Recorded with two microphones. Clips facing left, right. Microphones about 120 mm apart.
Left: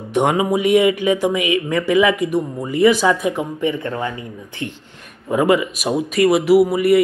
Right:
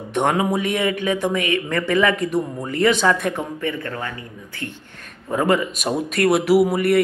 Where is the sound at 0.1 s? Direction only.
10° left (ahead or behind).